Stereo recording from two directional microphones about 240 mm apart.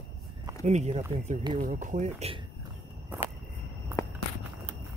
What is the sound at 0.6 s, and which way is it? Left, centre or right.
Speech, right.